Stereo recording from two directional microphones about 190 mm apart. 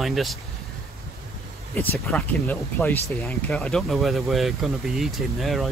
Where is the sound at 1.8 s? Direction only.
5° left (ahead or behind).